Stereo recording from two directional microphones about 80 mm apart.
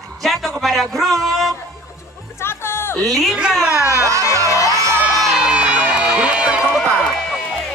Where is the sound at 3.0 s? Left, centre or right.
Centre.